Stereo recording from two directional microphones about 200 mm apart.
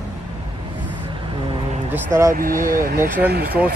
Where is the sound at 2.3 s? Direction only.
45° right (ahead or behind).